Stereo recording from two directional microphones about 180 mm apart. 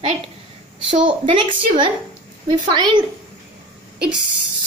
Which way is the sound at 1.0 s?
25° right (ahead or behind).